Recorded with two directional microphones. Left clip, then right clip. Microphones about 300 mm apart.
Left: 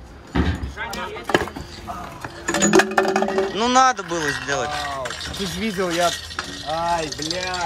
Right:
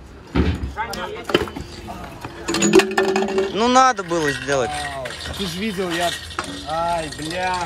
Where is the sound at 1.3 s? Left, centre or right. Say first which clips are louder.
Even; centre.